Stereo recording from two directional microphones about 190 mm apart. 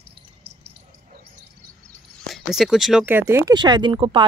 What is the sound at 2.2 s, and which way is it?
Speech, centre (ahead or behind).